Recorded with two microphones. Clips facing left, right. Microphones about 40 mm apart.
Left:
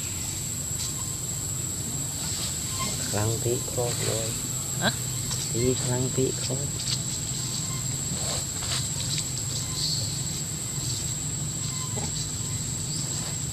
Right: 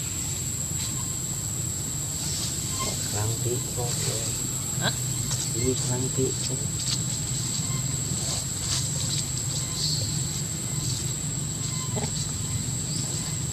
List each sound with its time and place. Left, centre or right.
3.8 s speech: centre
4.8 s speech: centre